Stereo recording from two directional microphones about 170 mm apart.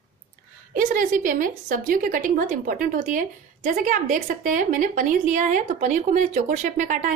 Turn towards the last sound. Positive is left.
turn(degrees=-45)  # may be behind; listen again after turning